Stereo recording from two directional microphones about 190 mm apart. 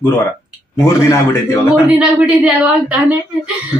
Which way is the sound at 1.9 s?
10° right (ahead or behind).